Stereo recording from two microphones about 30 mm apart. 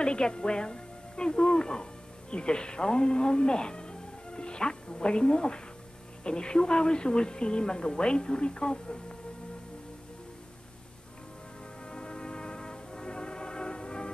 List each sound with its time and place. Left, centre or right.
0.0 s speech: left
11.9 s music: left